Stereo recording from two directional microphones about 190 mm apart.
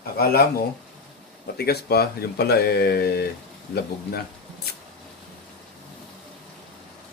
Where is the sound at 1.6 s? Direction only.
55° left (ahead or behind).